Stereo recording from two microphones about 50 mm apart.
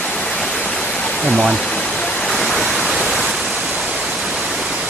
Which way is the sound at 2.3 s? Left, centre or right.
Centre.